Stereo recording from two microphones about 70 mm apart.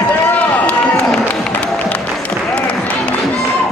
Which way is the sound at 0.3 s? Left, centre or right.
Centre.